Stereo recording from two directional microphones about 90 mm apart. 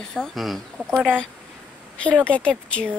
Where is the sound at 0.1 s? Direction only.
Centre (ahead or behind).